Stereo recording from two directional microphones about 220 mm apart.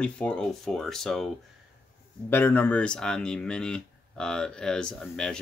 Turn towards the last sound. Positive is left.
turn(degrees=0)  # may be behind; listen again after turning